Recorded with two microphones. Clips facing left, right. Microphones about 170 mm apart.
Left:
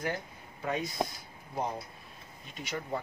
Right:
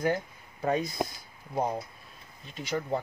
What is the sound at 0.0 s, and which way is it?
Speech, 40° right (ahead or behind).